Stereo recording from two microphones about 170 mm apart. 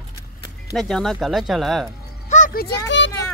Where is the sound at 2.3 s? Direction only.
50° left (ahead or behind).